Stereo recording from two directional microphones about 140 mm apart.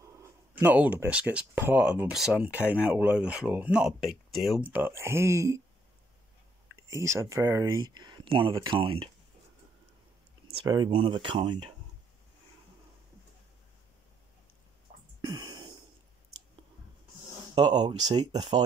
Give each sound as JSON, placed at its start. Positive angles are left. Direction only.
{"t": 0.0, "sound": "speech", "side_deg": -20}
{"t": 6.9, "sound": "speech", "side_deg": -20}
{"t": 10.6, "sound": "speech", "side_deg": -30}
{"t": 14.9, "sound": "a sound", "side_deg": -55}
{"t": 15.2, "sound": "a sound", "side_deg": -30}
{"t": 17.8, "sound": "speech", "side_deg": -30}